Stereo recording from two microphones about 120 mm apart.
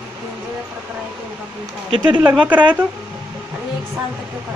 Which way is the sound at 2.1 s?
15° right (ahead or behind).